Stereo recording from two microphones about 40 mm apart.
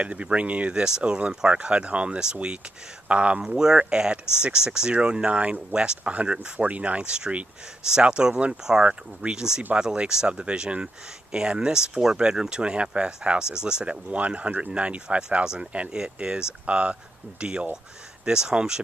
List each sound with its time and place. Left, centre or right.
0.0 s speech: right
0.8 s speech: right
3.4 s speech: centre; by 7.0 s right
7.0 s speech: right